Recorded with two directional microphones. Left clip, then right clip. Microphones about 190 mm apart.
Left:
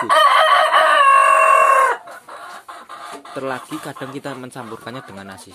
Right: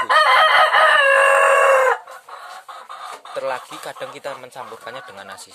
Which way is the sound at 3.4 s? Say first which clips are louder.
Even; centre (ahead or behind).